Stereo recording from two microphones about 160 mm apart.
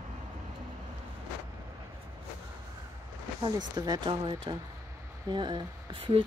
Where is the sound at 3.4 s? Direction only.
25° right (ahead or behind).